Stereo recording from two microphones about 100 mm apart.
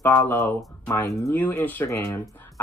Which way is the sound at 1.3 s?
15° left (ahead or behind).